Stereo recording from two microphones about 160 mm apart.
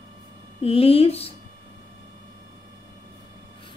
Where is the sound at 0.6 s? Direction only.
35° left (ahead or behind).